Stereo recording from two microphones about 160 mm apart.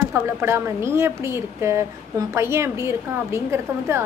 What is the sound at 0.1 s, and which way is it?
A woman's voice, 15° right (ahead or behind).